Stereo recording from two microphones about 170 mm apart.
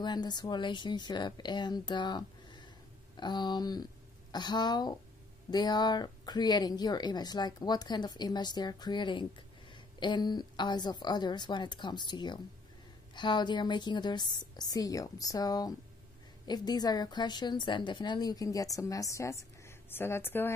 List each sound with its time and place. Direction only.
0.0 s speech: 25° left (ahead or behind)